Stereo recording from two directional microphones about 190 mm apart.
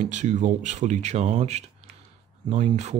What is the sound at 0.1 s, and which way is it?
Speech, 40° right (ahead or behind).